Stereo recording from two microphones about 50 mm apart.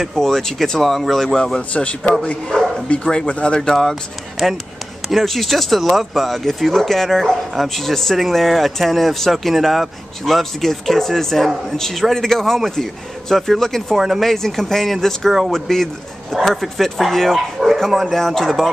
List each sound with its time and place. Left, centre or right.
0.0 s speech: centre
1.7 s speech: left
3.8 s speech: centre
13.9 s speech: centre
14.3 s speech: centre